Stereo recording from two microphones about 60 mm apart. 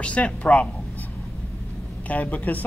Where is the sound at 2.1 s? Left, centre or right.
Left.